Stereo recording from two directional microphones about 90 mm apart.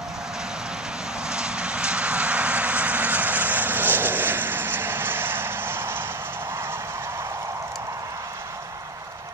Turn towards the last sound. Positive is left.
turn(degrees=-30)  # may be behind; listen again after turning